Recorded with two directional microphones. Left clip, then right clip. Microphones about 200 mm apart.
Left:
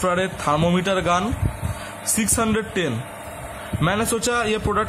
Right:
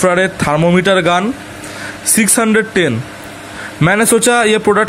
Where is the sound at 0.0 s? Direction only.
20° right (ahead or behind).